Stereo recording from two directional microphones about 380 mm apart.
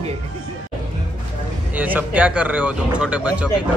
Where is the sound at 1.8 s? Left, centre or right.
Centre.